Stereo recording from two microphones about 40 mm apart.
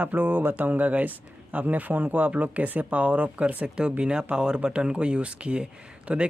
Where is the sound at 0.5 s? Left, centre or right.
Right.